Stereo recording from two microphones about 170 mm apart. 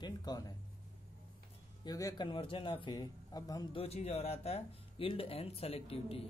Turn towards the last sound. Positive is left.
turn(degrees=35)  # may be behind; listen again after turning